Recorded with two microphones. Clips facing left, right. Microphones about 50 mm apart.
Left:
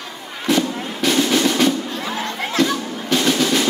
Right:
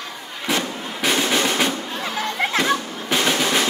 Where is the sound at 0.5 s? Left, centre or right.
Centre.